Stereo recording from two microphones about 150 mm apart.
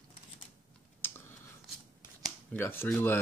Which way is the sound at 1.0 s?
15° left (ahead or behind).